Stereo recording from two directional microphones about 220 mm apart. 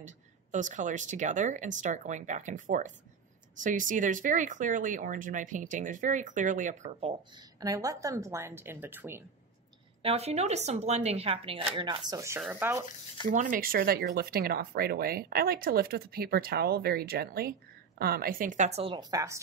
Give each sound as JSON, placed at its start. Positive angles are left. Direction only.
{"t": 0.0, "sound": "speech", "side_deg": -35}
{"t": 7.6, "sound": "a woman's voice", "side_deg": -15}
{"t": 10.0, "sound": "speech", "side_deg": -30}
{"t": 13.3, "sound": "speech", "side_deg": -35}